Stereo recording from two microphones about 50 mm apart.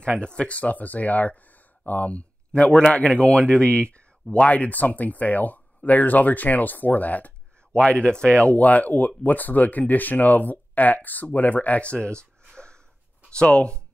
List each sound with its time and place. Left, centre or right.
0.2 s speech: left
7.8 s speech: left
12.4 s wheeze: centre
13.3 s speech: left